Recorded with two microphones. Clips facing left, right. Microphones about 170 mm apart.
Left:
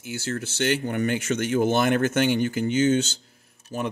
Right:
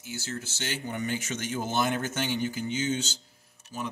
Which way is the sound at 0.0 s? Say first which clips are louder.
Left 7 dB; 60° left (ahead or behind).